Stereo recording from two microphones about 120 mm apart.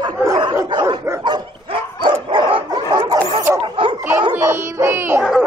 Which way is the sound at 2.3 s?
40° right (ahead or behind).